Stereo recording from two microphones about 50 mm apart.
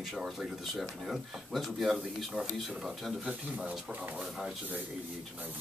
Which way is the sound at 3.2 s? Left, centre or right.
Right.